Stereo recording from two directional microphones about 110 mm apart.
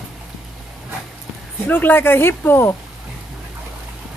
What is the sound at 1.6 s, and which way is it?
Speech, 20° left (ahead or behind).